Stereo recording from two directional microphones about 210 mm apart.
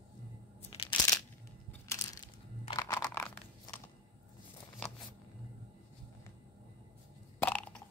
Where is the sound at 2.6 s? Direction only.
20° left (ahead or behind).